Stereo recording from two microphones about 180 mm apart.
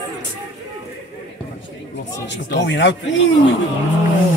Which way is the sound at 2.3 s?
75° left (ahead or behind).